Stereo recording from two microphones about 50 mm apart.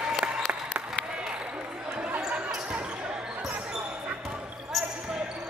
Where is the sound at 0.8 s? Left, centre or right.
Centre.